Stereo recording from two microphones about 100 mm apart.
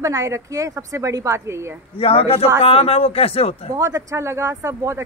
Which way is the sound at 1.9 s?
70° left (ahead or behind).